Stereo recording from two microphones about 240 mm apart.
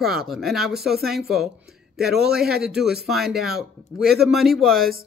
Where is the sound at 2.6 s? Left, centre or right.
Centre.